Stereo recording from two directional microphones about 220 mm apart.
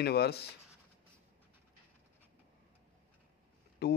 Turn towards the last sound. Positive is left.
turn(degrees=50)  # may be behind; listen again after turning